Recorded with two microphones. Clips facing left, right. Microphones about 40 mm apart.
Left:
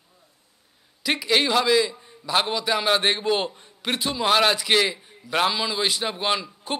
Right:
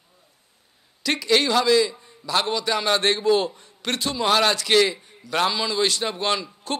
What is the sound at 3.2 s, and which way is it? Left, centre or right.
Speech, left.